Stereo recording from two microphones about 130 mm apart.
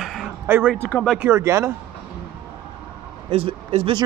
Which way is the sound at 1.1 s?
20° right (ahead or behind).